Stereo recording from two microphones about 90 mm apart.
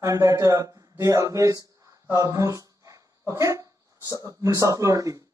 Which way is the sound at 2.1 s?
35° right (ahead or behind).